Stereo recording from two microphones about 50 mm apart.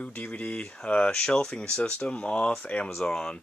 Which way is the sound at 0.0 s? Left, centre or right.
Left.